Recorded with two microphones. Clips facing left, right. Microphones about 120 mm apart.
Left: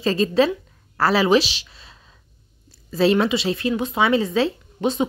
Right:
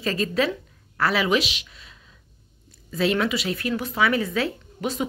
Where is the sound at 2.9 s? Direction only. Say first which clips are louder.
Left 5 dB; 30° left (ahead or behind).